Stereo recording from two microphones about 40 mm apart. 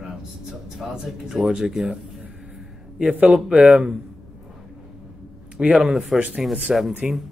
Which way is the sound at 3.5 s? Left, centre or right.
Right.